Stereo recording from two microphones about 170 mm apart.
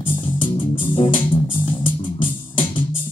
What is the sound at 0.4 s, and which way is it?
Music, 30° left (ahead or behind).